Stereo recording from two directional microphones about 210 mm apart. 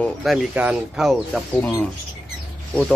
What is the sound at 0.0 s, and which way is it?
Speech, centre (ahead or behind).